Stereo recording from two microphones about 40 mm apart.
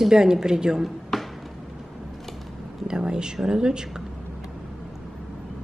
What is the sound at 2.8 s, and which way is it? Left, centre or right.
Speech, centre.